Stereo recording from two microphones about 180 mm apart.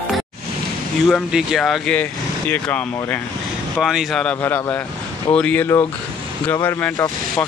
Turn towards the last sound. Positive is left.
turn(degrees=10)  # may be behind; listen again after turning